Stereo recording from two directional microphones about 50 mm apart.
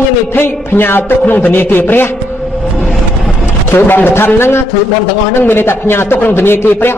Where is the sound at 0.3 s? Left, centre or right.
Left.